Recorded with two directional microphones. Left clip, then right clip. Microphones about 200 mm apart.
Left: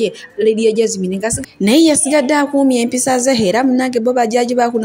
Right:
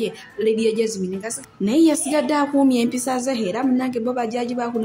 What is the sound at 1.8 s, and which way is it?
A woman's voice, 15° left (ahead or behind).